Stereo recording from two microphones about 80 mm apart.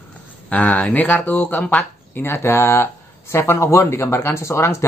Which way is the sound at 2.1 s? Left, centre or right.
Left.